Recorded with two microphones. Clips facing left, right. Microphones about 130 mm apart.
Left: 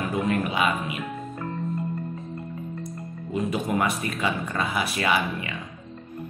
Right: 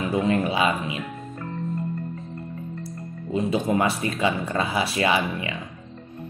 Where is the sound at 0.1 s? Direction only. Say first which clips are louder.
Right 4 dB; 30° right (ahead or behind).